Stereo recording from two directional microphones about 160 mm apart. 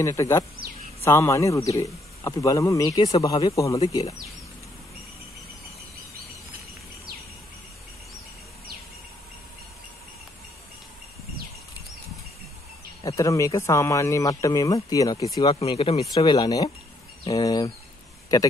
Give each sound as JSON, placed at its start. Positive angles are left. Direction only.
{"t": 0.0, "sound": "speech", "side_deg": 20}
{"t": 13.0, "sound": "speech", "side_deg": 20}
{"t": 15.4, "sound": "speech", "side_deg": 35}
{"t": 16.2, "sound": "speech", "side_deg": 25}